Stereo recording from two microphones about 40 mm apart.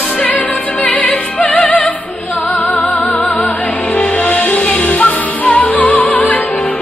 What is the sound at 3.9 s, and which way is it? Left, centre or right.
Music, left.